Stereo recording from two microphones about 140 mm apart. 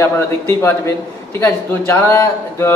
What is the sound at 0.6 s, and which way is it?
Speech, 20° left (ahead or behind).